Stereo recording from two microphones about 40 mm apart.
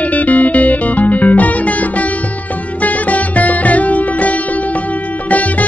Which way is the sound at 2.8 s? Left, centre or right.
Left.